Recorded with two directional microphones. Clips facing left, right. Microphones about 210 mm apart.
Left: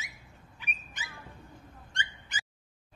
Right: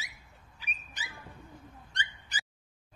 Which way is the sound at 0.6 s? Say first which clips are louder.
Left 1 dB; 35° right (ahead or behind).